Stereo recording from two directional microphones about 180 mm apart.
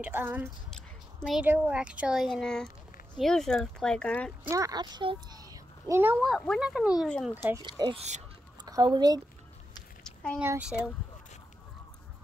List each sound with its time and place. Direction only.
0.0 s speech: 10° right (ahead or behind)
0.7 s a sound: centre (ahead or behind)
1.4 s speech: 10° right (ahead or behind)
4.5 s speech: 20° right (ahead or behind)
6.2 s speech: centre (ahead or behind)
7.6 s speech: 25° right (ahead or behind)
10.0 s a sound: 5° left (ahead or behind)
10.4 s speech: 10° right (ahead or behind)